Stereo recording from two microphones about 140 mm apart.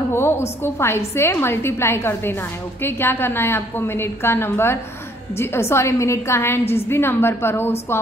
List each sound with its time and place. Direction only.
0.1 s a woman's voice: 20° left (ahead or behind)